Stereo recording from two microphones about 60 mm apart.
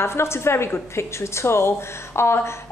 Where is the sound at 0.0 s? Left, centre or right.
Left.